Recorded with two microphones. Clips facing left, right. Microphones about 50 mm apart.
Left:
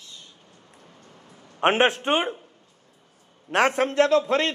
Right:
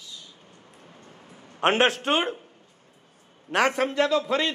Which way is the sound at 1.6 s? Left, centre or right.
Left.